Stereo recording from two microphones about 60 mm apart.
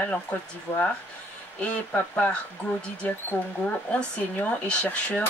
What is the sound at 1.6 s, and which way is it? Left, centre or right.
Speech, left.